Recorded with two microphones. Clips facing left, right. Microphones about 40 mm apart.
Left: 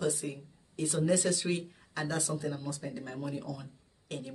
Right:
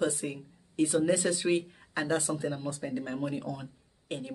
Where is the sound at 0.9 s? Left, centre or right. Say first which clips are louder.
Even; centre.